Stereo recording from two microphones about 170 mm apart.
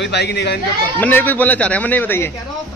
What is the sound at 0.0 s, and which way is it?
Speech, 80° left.